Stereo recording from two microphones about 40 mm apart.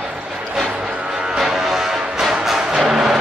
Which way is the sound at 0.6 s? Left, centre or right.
Centre.